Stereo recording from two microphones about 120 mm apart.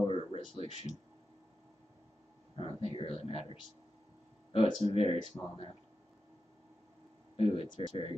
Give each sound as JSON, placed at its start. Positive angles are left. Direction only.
{"t": 0.0, "sound": "a sound", "side_deg": 50}
{"t": 2.5, "sound": "speech", "side_deg": 50}
{"t": 4.5, "sound": "speech", "side_deg": 50}
{"t": 5.4, "sound": "speech", "side_deg": 25}
{"t": 7.3, "sound": "speech", "side_deg": 50}